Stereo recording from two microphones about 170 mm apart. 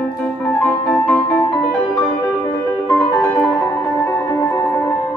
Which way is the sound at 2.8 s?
15° left (ahead or behind).